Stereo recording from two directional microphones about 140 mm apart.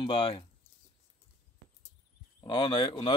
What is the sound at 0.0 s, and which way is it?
Speech, 35° left (ahead or behind).